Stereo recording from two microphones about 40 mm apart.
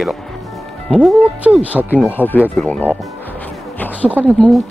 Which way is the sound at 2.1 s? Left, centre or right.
Left.